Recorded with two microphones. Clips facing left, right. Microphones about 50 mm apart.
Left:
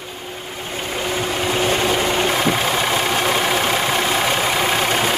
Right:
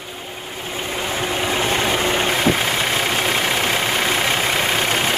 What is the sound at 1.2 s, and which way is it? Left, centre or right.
Vehicle, right.